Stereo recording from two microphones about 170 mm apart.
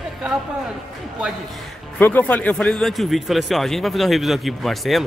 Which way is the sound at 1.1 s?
5° right (ahead or behind).